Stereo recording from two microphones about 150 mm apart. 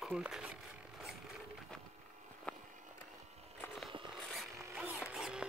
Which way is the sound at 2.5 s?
5° left (ahead or behind).